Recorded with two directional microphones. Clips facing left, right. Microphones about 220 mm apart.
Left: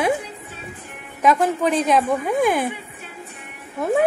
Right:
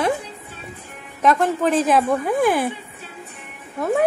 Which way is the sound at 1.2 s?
5° left (ahead or behind).